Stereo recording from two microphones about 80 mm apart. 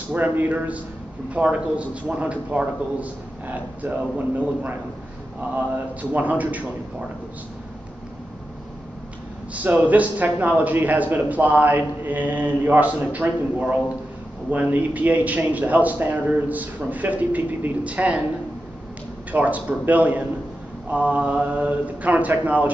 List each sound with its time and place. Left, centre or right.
0.1 s a man's voice: right
6.1 s a man's voice: centre
9.5 s a man's voice: right
19.3 s a man's voice: centre